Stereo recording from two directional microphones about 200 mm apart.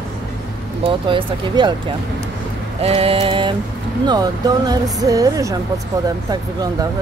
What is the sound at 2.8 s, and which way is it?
Speech, 30° right (ahead or behind).